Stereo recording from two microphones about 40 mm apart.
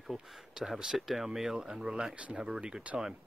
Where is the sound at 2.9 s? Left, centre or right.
Right.